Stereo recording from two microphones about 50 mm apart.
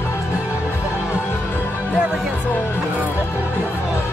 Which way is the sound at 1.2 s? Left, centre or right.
Left.